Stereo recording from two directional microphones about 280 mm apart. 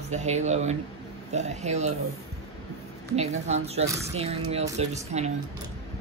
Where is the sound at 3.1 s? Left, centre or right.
Right.